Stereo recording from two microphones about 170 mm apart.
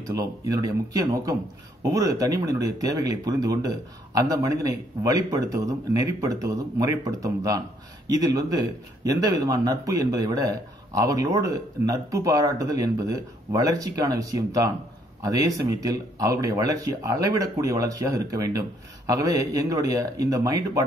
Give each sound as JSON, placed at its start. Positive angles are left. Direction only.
{"t": 0.2, "sound": "a man's voice", "side_deg": -20}